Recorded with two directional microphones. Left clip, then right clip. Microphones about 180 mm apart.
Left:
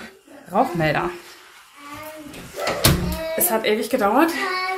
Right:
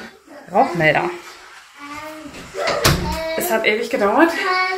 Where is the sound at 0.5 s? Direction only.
35° left (ahead or behind).